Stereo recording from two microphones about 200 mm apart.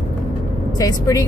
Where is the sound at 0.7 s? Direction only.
15° left (ahead or behind).